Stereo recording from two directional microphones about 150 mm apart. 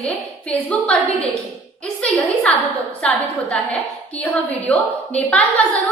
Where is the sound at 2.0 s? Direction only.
5° left (ahead or behind).